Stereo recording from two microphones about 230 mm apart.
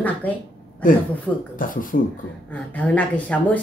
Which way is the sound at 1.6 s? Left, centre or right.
Left.